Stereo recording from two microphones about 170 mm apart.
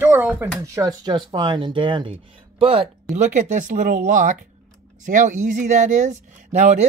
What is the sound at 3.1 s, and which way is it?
Speech, 45° right (ahead or behind).